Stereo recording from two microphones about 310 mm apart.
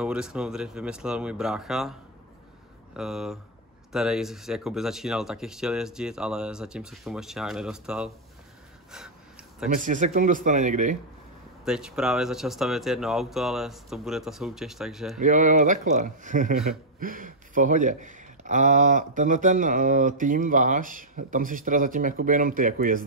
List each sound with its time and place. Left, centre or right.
0.0 s speech: centre
3.0 s speech: centre
8.9 s gasp: centre
9.8 s speech: right
11.6 s speech: centre
15.1 s speech: right